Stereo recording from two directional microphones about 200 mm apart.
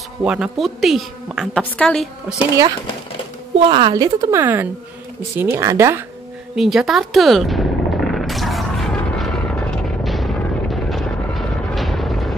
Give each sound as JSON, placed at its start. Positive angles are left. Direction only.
{"t": 0.2, "sound": "a woman's voice", "side_deg": -5}
{"t": 3.7, "sound": "a woman's voice", "side_deg": -20}
{"t": 6.5, "sound": "a sound", "side_deg": 0}